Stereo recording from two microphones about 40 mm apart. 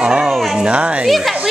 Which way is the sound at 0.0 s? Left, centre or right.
Right.